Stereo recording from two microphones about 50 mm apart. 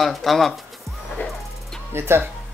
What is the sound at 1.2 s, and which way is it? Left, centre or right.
Music, left.